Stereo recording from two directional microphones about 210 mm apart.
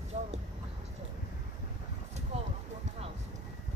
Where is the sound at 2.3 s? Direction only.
30° right (ahead or behind).